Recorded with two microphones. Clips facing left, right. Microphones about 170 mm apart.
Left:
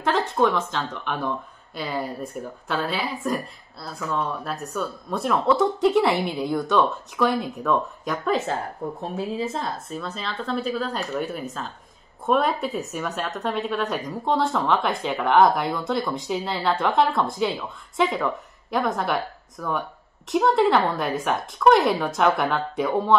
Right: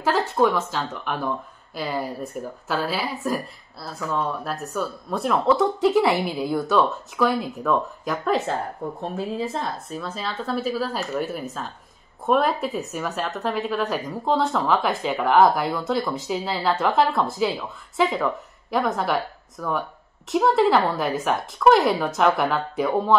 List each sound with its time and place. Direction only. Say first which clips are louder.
0.0 s a woman's voice: right 1 dB; 5° right (ahead or behind)